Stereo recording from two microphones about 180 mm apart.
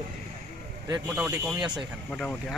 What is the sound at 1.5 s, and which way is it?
Speech, 25° right (ahead or behind).